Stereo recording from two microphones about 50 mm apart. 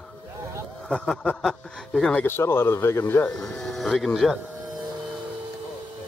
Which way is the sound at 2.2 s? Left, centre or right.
Left.